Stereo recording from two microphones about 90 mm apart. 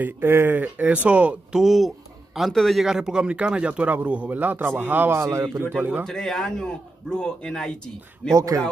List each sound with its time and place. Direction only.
0.0 s speech: 25° right (ahead or behind)
5.8 s a man's voice: 20° right (ahead or behind)
6.0 s a man's voice: 5° left (ahead or behind)